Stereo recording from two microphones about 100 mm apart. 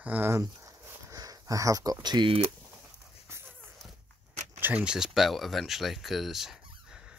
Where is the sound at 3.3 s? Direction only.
25° right (ahead or behind).